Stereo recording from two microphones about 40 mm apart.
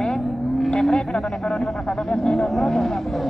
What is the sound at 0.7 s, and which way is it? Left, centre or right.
Speech, left.